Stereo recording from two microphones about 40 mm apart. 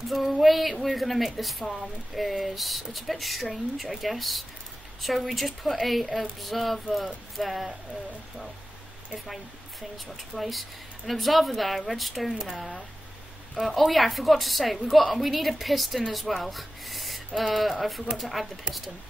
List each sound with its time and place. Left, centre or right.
0.4 s speech: centre
9.1 s speech: centre
13.6 s speech: centre